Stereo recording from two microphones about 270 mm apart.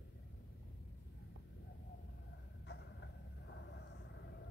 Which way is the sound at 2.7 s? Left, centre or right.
Left.